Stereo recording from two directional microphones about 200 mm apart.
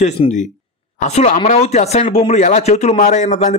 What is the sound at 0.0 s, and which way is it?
Speech, 35° left (ahead or behind).